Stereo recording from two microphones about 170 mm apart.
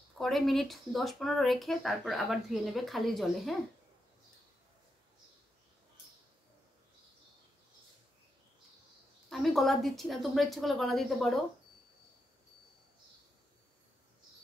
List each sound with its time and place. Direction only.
0.2 s speech: centre (ahead or behind)
9.3 s speech: centre (ahead or behind)